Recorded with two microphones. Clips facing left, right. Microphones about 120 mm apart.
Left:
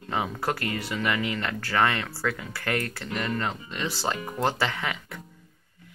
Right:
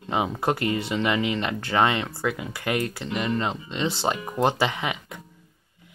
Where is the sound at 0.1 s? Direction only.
20° right (ahead or behind).